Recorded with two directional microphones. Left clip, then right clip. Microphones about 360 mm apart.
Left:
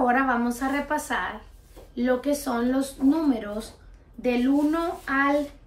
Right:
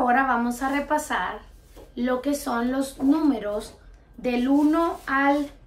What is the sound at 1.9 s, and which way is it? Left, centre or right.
Speech, centre.